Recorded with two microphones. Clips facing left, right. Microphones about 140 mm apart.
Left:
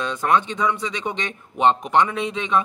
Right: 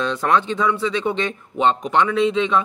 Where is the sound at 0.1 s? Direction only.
15° left (ahead or behind).